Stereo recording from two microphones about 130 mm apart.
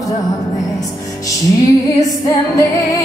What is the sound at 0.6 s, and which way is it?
Music, 25° left (ahead or behind).